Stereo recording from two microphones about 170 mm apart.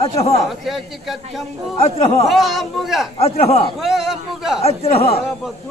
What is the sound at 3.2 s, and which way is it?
Speech, 35° left (ahead or behind).